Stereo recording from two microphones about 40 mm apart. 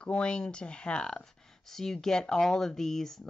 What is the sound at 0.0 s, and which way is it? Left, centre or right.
Speech, left.